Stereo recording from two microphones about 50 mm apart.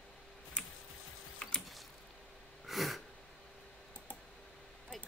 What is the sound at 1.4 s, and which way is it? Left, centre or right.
Mechanisms, left.